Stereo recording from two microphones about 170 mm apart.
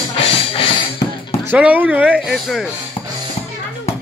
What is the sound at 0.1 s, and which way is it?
Music, 35° left (ahead or behind).